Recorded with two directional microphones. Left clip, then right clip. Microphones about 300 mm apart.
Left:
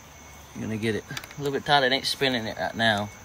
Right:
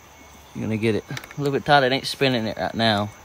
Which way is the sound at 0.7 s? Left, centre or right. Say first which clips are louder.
Right 5 dB; centre.